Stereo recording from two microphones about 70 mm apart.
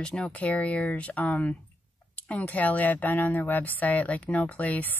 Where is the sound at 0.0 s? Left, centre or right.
Centre.